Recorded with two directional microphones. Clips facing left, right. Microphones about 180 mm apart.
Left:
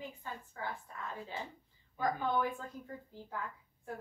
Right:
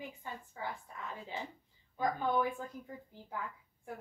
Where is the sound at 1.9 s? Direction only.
15° right (ahead or behind).